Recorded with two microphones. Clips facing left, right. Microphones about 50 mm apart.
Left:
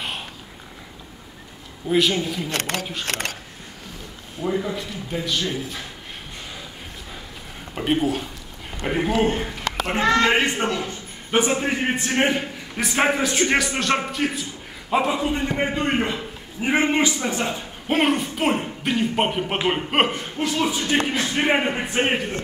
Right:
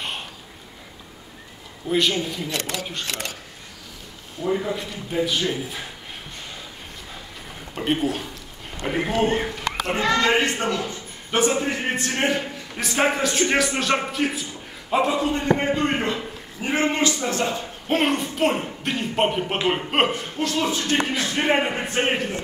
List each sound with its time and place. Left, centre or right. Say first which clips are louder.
1.9 s a woman's voice: left 2 dB; centre
2.4 s speech: left 2 dB; left
4.6 s a man's voice: left 1 dB; centre
7.7 s a woman's voice: left 2 dB; centre
9.6 s children playing: even; centre
9.9 s a man's voice: left 2 dB; left; by 14.4 s centre
15.0 s a man's voice: right 2 dB; centre